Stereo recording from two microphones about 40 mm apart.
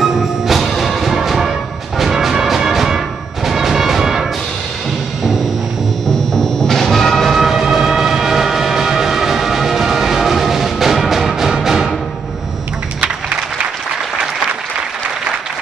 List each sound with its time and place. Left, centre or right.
0.0 s music: centre
6.0 s music: centre
7.3 s train: centre
11.5 s music: centre
13.0 s music: right